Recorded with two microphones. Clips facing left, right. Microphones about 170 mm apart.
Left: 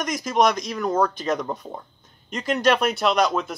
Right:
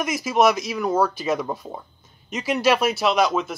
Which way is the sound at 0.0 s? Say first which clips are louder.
Right 2 dB; 5° right (ahead or behind).